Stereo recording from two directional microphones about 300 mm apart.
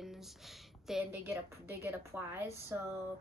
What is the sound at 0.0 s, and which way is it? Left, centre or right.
A woman's voice, centre.